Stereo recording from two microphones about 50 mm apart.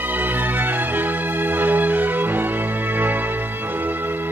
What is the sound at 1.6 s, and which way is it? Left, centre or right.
Music, right.